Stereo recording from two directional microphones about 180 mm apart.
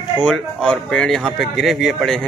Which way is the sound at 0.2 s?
5° left (ahead or behind).